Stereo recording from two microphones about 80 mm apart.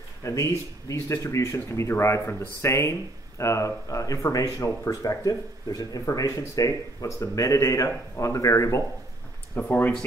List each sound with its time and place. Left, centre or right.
0.2 s speech: left
9.6 s speech: left